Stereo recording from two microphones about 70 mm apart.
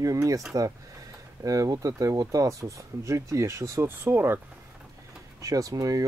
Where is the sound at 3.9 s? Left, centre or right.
Right.